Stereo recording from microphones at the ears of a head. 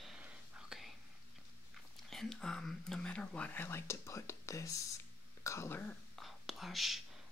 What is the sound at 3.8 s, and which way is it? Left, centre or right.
Speech, left.